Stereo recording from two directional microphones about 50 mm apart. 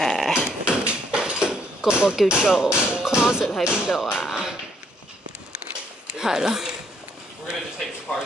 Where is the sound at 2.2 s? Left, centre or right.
Centre.